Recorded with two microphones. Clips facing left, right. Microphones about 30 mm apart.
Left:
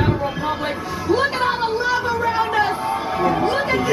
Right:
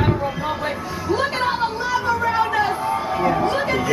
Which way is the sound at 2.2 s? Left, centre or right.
Centre.